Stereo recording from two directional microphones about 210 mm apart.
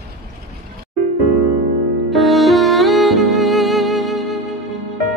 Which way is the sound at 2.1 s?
Centre (ahead or behind).